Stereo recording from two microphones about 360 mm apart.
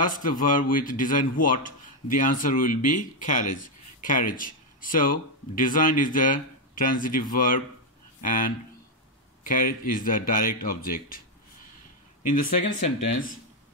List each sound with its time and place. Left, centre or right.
0.0 s speech: left
12.3 s speech: left